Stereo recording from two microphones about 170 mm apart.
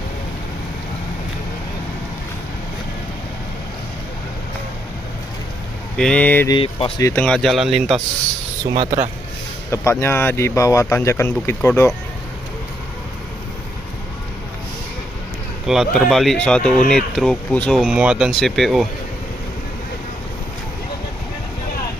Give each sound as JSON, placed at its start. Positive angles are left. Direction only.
{"t": 5.9, "sound": "speech", "side_deg": 5}
{"t": 6.5, "sound": "speech", "side_deg": 35}
{"t": 7.0, "sound": "speech", "side_deg": 15}
{"t": 7.2, "sound": "speech", "side_deg": 0}
{"t": 8.7, "sound": "speech", "side_deg": -40}
{"t": 9.7, "sound": "speech", "side_deg": 15}
{"t": 15.6, "sound": "speech", "side_deg": 0}